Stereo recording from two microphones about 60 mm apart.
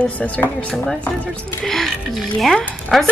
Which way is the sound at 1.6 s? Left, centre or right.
Centre.